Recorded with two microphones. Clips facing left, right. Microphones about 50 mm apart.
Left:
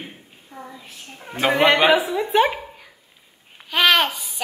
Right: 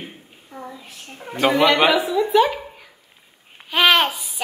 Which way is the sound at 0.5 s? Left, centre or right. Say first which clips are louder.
Right 3 dB; centre.